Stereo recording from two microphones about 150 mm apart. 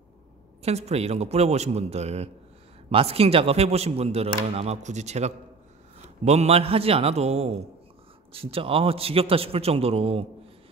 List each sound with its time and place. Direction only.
0.6 s a man's voice: 45° right (ahead or behind)